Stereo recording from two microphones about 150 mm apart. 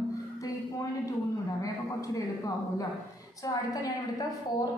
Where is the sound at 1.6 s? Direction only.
20° left (ahead or behind).